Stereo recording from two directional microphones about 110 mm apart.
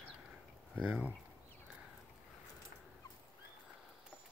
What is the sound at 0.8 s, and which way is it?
Speech, 10° right (ahead or behind).